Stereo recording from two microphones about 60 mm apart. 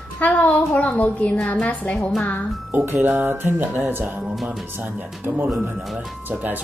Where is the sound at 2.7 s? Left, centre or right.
Right.